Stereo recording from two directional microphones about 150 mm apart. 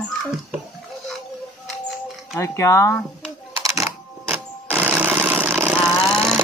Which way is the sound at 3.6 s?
20° right (ahead or behind).